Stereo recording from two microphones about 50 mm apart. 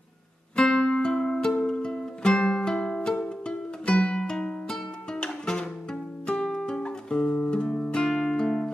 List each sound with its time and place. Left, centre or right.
0.6 s music: centre